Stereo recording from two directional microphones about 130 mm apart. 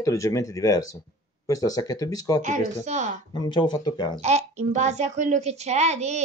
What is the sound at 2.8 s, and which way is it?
Speech, 65° right (ahead or behind).